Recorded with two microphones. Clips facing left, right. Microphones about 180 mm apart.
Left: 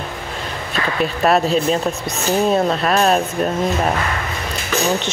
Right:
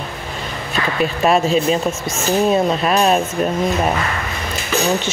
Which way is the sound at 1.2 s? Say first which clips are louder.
Even; centre (ahead or behind).